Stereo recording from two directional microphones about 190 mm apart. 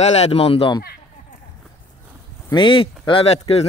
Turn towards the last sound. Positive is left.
turn(degrees=35)  # may be behind; listen again after turning